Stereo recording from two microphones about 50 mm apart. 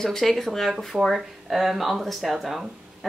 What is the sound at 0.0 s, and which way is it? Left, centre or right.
Speech, centre.